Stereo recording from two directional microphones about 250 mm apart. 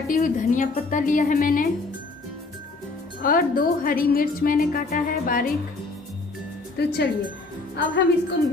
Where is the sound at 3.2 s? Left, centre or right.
Left.